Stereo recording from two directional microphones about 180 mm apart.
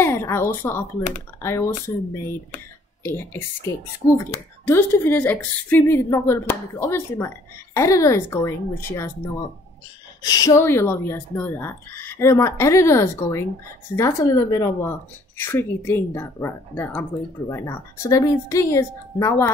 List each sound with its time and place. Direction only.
0.0 s a woman's voice: 15° left (ahead or behind)
3.0 s a woman's voice: 15° left (ahead or behind)
10.2 s a woman's voice: 20° left (ahead or behind)